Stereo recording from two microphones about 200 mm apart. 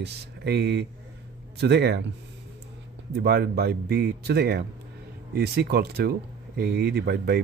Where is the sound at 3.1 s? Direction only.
50° right (ahead or behind).